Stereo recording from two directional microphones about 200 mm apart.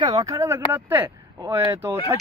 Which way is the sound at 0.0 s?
20° right (ahead or behind).